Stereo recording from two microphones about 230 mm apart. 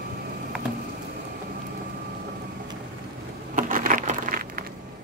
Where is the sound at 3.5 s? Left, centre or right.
Right.